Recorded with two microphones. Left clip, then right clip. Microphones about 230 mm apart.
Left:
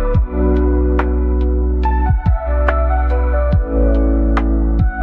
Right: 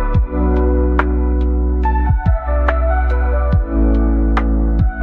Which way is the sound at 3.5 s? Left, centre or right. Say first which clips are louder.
Left 2 dB; centre.